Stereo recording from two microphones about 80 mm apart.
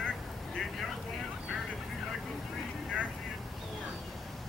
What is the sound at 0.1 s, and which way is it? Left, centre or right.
Vehicle, centre.